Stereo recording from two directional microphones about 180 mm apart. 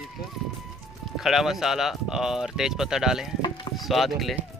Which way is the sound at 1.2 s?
Centre (ahead or behind).